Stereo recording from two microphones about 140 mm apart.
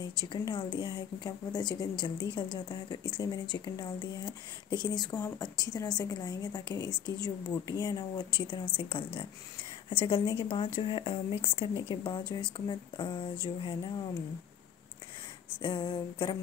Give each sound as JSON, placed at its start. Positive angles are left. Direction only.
{"t": 0.0, "sound": "speech", "side_deg": 30}
{"t": 15.6, "sound": "speech", "side_deg": 35}